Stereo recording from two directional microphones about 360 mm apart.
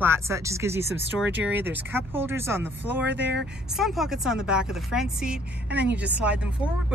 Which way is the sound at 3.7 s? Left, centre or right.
Centre.